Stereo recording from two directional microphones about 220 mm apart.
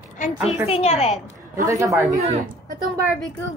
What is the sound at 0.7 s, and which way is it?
Speech, 30° left (ahead or behind).